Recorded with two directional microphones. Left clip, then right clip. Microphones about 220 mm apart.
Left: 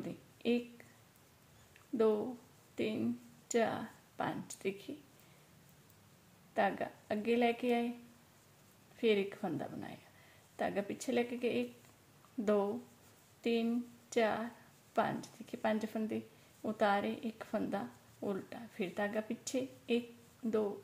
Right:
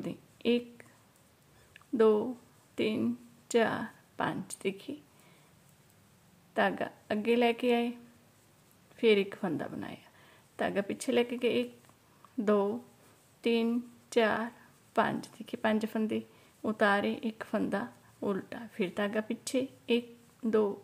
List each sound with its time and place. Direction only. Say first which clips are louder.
0.0 s a sound: right 6 dB; 25° right (ahead or behind)
2.0 s a woman's voice: right 7 dB; 25° right (ahead or behind)
6.5 s a woman's voice: right 4 dB; 25° right (ahead or behind)
8.9 s a woman's voice: right 6 dB; 25° right (ahead or behind)